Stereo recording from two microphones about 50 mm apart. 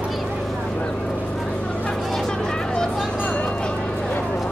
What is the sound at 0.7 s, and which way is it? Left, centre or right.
Vehicle, left.